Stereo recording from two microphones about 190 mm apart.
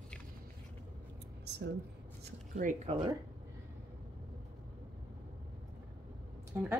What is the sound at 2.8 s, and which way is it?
Speech, 25° right (ahead or behind).